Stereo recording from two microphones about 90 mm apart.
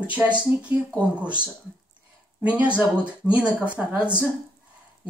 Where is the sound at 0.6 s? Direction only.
15° right (ahead or behind).